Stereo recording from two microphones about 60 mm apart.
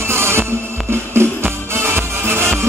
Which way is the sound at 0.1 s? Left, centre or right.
Right.